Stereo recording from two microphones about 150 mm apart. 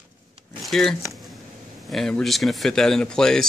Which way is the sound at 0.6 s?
Centre (ahead or behind).